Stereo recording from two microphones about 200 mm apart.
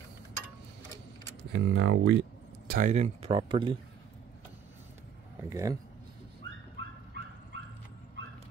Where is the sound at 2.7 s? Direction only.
40° right (ahead or behind).